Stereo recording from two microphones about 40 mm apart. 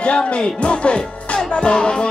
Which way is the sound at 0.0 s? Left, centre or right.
Left.